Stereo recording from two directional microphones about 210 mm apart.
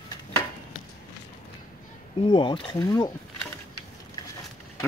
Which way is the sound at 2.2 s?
20° left (ahead or behind).